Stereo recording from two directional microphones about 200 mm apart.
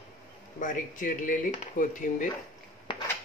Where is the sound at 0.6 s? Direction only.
40° left (ahead or behind).